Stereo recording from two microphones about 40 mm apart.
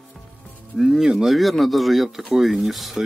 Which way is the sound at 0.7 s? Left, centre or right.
Centre.